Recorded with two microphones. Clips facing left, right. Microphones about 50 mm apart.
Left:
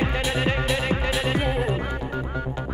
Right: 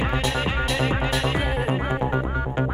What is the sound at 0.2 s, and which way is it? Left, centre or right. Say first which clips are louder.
Music: even; centre.